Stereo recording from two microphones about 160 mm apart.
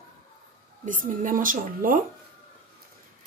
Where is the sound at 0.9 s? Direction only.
55° right (ahead or behind).